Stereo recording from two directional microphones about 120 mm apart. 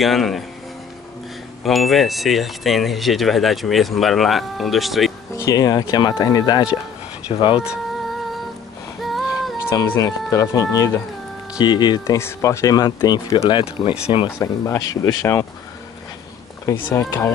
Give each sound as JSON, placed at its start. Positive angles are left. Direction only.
{"t": 0.0, "sound": "speech", "side_deg": 0}
{"t": 1.6, "sound": "speech", "side_deg": 0}
{"t": 5.3, "sound": "speech", "side_deg": 30}
{"t": 7.3, "sound": "speech", "side_deg": 45}
{"t": 9.0, "sound": "female singing", "side_deg": 0}
{"t": 9.7, "sound": "speech", "side_deg": 25}
{"t": 11.6, "sound": "speech", "side_deg": 40}
{"t": 12.2, "sound": "speech", "side_deg": 25}
{"t": 13.5, "sound": "speech", "side_deg": 45}
{"t": 14.4, "sound": "speech", "side_deg": 25}
{"t": 16.6, "sound": "speech", "side_deg": 20}